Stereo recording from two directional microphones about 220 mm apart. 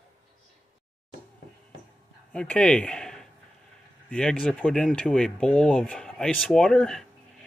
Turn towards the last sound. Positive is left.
turn(degrees=0)  # may be behind; listen again after turning